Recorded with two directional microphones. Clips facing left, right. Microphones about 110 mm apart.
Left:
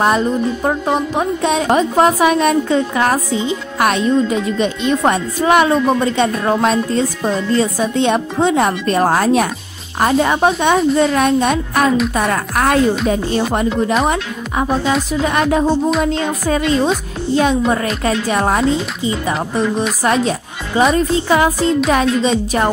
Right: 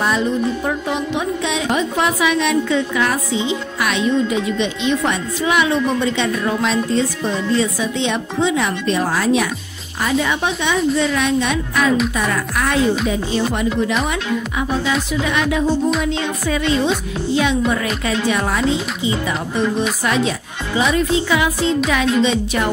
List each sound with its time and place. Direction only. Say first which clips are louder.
0.7 s music: left 4 dB; 40° left (ahead or behind)
14.0 s a woman's voice: left 2 dB; 40° left (ahead or behind)
16.0 s music: left 3 dB; 45° left (ahead or behind)
17.4 s a woman's voice: left 4 dB; 40° left (ahead or behind)
20.0 s a woman's voice: left 3 dB; 40° left (ahead or behind)